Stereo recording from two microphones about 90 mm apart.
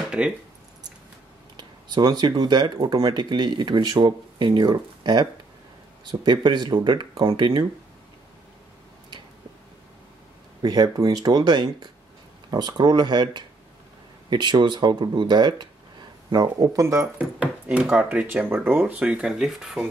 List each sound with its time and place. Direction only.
0.2 s speech: 15° right (ahead or behind)
1.6 s speech: 55° right (ahead or behind)
10.6 s speech: 50° right (ahead or behind)
17.0 s speech: 10° right (ahead or behind)